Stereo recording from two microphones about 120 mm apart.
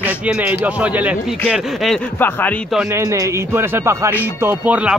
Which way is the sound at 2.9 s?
25° right (ahead or behind).